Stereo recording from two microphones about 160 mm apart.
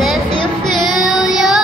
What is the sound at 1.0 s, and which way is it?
Child singing, centre (ahead or behind).